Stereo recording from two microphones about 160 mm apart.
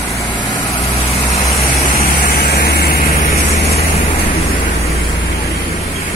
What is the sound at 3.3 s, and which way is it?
Vehicle, 40° left (ahead or behind).